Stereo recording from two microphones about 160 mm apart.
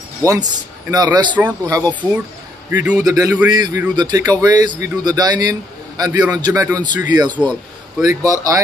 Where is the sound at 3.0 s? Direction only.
20° right (ahead or behind).